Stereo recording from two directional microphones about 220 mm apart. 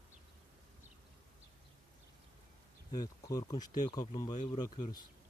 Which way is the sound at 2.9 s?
15° left (ahead or behind).